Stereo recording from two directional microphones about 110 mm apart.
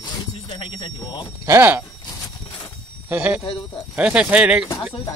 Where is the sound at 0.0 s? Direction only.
50° left (ahead or behind).